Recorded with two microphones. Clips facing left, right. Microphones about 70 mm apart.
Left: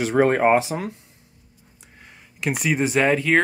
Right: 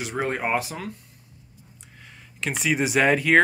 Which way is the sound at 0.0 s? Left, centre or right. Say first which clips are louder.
Left 9 dB; left.